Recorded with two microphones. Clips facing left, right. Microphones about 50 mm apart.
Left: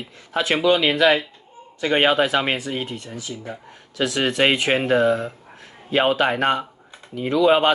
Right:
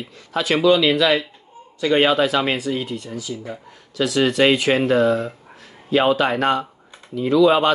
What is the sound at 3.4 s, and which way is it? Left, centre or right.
Speech, left.